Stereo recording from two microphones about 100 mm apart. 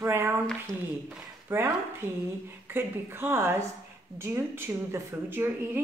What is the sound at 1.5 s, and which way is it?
A woman's voice, 20° right (ahead or behind).